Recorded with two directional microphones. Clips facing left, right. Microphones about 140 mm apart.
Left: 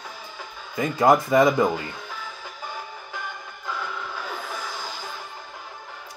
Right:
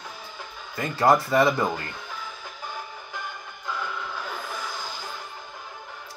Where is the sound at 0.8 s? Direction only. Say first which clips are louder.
Left 2 dB; 20° left (ahead or behind).